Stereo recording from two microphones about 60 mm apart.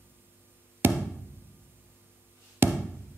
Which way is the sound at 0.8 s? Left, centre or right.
Right.